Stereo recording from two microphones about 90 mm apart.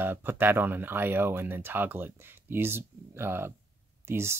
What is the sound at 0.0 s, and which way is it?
Speech, 25° right (ahead or behind).